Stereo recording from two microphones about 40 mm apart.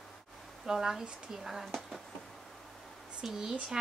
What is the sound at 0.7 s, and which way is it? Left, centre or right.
Speech, centre.